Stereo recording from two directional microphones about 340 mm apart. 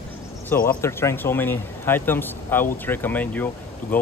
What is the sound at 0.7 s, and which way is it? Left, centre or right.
Speech, centre.